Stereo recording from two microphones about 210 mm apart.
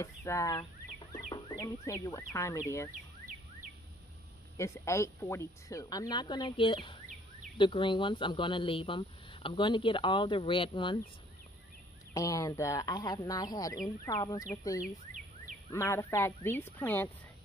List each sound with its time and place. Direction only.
0.0 s speech: 15° left (ahead or behind)
4.6 s speech: 15° left (ahead or behind)
12.1 s speech: 15° left (ahead or behind)